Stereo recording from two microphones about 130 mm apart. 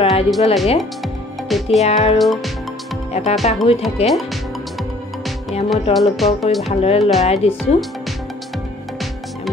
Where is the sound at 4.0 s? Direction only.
50° left (ahead or behind).